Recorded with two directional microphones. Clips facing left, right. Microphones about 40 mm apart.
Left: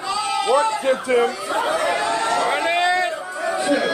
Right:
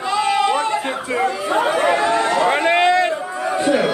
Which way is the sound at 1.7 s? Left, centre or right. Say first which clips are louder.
Right 4 dB; right.